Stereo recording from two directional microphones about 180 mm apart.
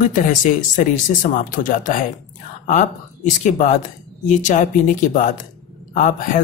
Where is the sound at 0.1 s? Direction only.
45° left (ahead or behind).